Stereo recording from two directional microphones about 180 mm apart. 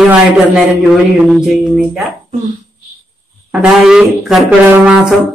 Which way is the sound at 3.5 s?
5° right (ahead or behind).